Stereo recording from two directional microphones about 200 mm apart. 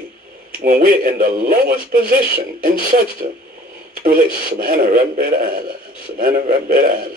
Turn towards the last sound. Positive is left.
turn(degrees=-45)  # may be behind; listen again after turning